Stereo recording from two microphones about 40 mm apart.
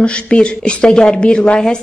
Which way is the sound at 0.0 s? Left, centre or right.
Left.